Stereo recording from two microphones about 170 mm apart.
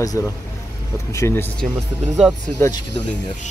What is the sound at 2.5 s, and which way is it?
Speech, 15° left (ahead or behind).